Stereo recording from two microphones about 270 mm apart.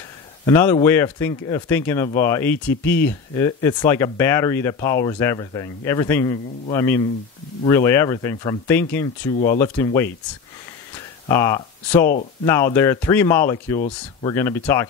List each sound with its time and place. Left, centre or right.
0.5 s speech: centre
11.2 s speech: centre
13.7 s speech: left
14.3 s speech: centre